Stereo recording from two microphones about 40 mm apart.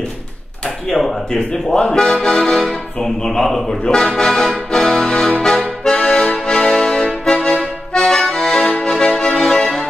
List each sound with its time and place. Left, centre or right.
0.8 s accordion: centre
4.7 s music: centre
5.4 s accordion: centre
6.4 s music: centre
7.9 s accordion: centre
8.9 s music: centre